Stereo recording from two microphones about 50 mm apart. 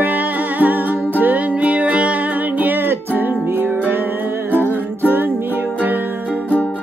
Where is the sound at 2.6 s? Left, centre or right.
Right.